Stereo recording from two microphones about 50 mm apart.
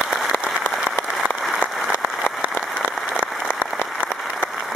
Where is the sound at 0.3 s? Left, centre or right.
Left.